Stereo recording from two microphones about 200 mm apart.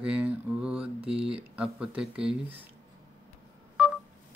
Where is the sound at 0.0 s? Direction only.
5° right (ahead or behind).